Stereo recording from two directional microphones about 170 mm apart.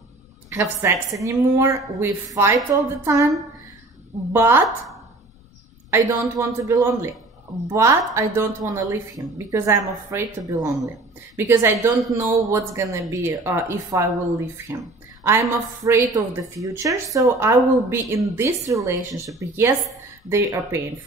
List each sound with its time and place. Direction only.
0.5 s a woman's voice: 15° right (ahead or behind)
4.3 s a woman's voice: 15° right (ahead or behind)
5.9 s a woman's voice: 15° right (ahead or behind)
15.2 s a woman's voice: 15° right (ahead or behind)